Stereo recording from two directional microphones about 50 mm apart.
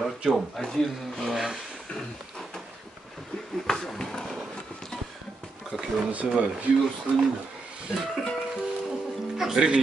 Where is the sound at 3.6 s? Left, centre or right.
Centre.